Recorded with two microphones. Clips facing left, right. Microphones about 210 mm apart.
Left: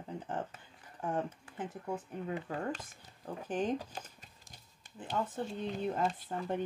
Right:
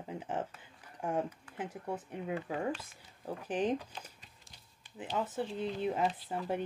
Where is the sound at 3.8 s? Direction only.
45° left (ahead or behind).